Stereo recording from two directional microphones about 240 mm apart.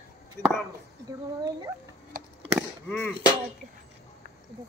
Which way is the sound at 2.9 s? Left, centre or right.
Centre.